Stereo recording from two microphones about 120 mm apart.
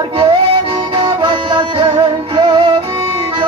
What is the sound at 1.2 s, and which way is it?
Music, 45° right (ahead or behind).